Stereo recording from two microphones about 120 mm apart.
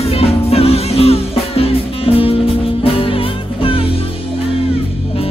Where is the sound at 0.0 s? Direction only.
55° left (ahead or behind).